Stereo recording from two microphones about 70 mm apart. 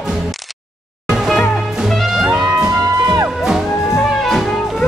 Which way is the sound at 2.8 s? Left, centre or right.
Right.